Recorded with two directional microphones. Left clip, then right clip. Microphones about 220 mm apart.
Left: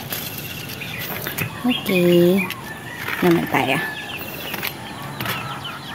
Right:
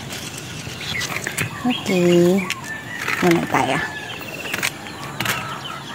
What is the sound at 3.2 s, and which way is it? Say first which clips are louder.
Speech: even; 15° left (ahead or behind).